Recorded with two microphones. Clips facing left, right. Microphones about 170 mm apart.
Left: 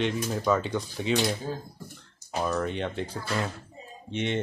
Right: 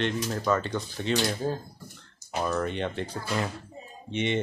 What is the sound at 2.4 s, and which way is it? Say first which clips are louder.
Speech: even; centre (ahead or behind).